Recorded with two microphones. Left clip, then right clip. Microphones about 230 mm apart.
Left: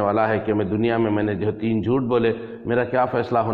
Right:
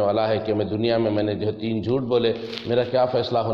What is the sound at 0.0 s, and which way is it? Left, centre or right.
A man's voice, left.